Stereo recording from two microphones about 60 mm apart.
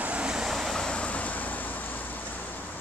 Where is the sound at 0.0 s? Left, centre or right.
Centre.